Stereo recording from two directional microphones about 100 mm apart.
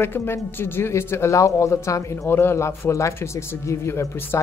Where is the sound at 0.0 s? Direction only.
25° left (ahead or behind).